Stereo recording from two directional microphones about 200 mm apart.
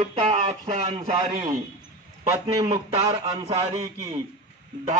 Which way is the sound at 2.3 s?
20° right (ahead or behind).